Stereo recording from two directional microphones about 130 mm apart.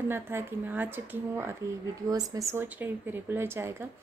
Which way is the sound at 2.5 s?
15° right (ahead or behind).